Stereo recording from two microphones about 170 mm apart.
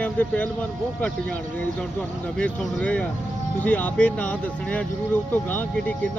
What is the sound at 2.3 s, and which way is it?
Speech, 5° left (ahead or behind).